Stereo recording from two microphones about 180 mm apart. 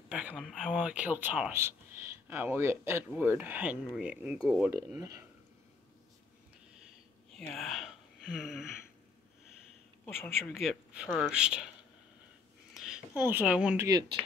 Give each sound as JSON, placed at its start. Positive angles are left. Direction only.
{"t": 0.1, "sound": "speech", "side_deg": -5}
{"t": 4.7, "sound": "speech", "side_deg": -20}
{"t": 7.3, "sound": "speech", "side_deg": 5}
{"t": 10.0, "sound": "speech", "side_deg": 10}
{"t": 10.5, "sound": "speech", "side_deg": 0}
{"t": 12.7, "sound": "a sound", "side_deg": 0}
{"t": 13.1, "sound": "speech", "side_deg": -10}